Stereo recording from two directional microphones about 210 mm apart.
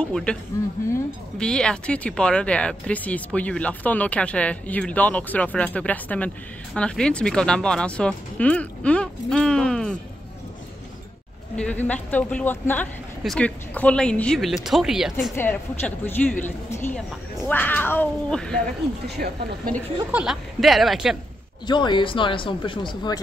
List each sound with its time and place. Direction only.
0.0 s speech: 5° left (ahead or behind)
11.5 s speech: 5° left (ahead or behind)
15.3 s speech: 10° left (ahead or behind)
19.0 s speech: 50° right (ahead or behind)
20.1 s speech: 5° right (ahead or behind)
21.6 s speech: 20° left (ahead or behind)